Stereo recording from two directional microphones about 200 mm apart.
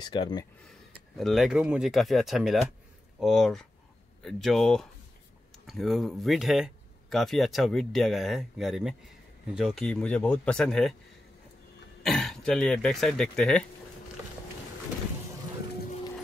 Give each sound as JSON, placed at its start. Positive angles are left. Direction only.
{"t": 0.0, "sound": "speech", "side_deg": 20}
{"t": 1.1, "sound": "speech", "side_deg": 0}
{"t": 12.0, "sound": "speech", "side_deg": 0}